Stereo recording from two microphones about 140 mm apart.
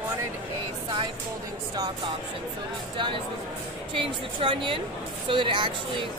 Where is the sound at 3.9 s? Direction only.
40° right (ahead or behind).